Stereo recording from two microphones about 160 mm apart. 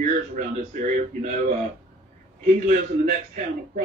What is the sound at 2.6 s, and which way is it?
Speech, 55° right (ahead or behind).